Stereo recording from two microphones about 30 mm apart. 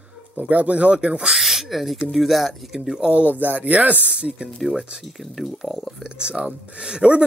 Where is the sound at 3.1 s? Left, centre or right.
Right.